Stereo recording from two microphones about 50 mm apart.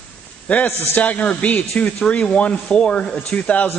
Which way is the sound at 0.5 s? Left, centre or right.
Left.